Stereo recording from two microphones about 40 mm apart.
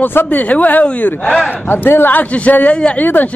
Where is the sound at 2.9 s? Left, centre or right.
Left.